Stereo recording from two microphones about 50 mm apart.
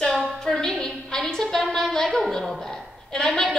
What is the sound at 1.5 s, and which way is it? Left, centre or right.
A woman's voice, centre.